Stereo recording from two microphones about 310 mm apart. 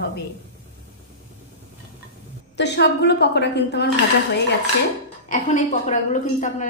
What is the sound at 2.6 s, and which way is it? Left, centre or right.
A woman's voice, left.